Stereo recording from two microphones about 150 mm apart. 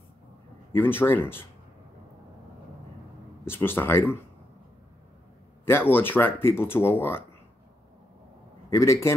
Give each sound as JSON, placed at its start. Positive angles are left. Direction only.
{"t": 0.7, "sound": "speech", "side_deg": 15}
{"t": 3.4, "sound": "speech", "side_deg": 15}
{"t": 5.7, "sound": "speech", "side_deg": 15}
{"t": 8.6, "sound": "a man's voice", "side_deg": 20}